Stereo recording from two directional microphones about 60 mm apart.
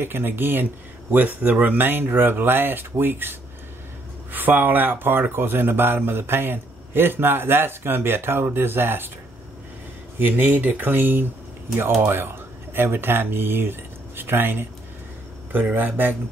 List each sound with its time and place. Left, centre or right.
0.0 s a man's voice: right
10.1 s a man's voice: right
15.7 s a man's voice: right